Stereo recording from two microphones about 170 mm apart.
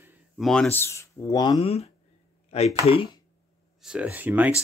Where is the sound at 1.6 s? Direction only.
35° left (ahead or behind).